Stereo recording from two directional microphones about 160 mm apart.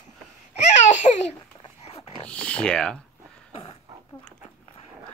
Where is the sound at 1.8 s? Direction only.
40° left (ahead or behind).